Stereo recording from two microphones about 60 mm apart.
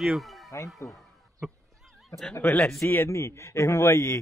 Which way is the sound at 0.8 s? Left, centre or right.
Left.